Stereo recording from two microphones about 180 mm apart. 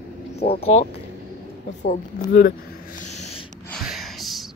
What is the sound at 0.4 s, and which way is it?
Speech, 35° left (ahead or behind).